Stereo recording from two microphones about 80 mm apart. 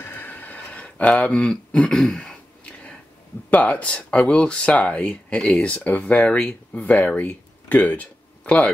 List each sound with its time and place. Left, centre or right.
0.0 s a sound: left
1.1 s throat clearing: centre
3.4 s speech: centre